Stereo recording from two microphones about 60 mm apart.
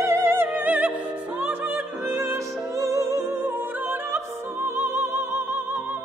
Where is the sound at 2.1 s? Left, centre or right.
Right.